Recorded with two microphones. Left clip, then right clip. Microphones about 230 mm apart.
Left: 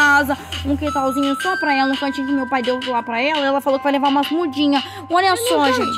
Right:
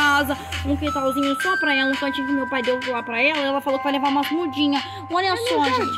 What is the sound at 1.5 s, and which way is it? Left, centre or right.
Speech, left.